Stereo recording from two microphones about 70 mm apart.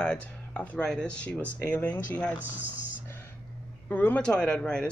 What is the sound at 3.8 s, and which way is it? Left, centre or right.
Speech, left.